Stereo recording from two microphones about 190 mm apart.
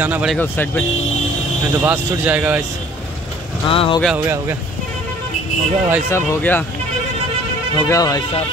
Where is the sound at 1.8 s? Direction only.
10° right (ahead or behind).